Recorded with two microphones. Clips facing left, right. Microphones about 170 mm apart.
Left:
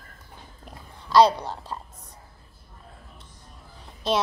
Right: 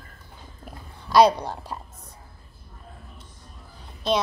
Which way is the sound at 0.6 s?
10° right (ahead or behind).